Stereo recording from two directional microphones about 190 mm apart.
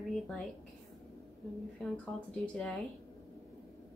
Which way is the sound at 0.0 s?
Centre (ahead or behind).